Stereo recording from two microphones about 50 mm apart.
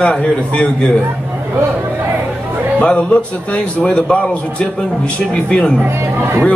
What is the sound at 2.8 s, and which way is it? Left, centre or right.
A man's voice, left.